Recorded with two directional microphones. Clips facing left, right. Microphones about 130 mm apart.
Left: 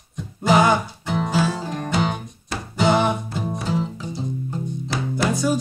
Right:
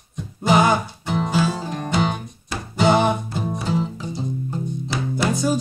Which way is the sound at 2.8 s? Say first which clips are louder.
Right 1 dB; 30° right (ahead or behind).